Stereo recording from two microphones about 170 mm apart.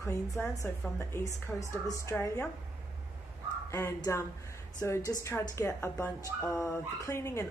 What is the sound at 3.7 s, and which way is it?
Speech, 15° left (ahead or behind).